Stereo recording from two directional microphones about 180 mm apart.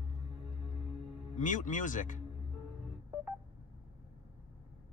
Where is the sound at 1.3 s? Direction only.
45° left (ahead or behind).